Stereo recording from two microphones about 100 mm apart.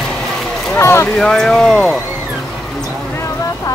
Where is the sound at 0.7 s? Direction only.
25° left (ahead or behind).